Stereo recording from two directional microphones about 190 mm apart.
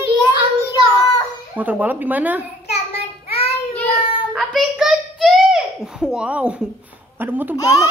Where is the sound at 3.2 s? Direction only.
30° left (ahead or behind).